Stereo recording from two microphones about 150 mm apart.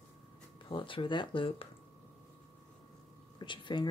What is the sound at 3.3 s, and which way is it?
Speech, 30° left (ahead or behind).